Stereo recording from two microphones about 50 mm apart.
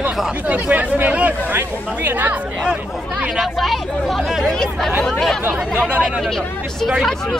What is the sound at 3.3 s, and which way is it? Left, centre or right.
Speech, centre.